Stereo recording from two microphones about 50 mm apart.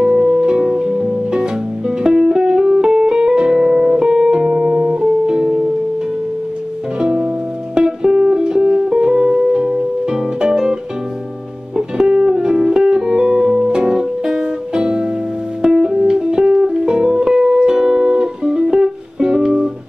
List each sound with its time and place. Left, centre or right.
0.0 s music: centre
3.5 s music: centre
7.0 s music: right
12.1 s music: centre